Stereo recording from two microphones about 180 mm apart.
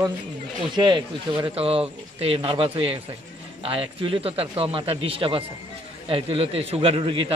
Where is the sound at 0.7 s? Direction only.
25° right (ahead or behind).